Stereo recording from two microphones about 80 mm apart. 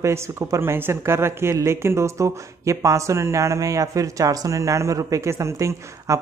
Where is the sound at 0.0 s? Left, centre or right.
Right.